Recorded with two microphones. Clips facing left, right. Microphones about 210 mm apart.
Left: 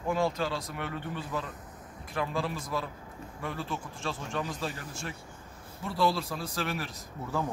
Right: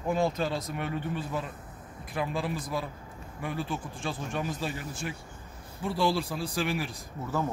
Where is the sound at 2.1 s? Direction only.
15° right (ahead or behind).